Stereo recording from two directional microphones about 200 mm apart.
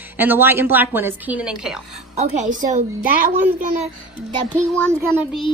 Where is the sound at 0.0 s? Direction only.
10° right (ahead or behind).